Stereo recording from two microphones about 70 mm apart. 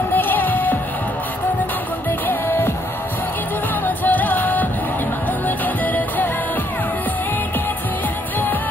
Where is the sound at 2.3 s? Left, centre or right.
Left.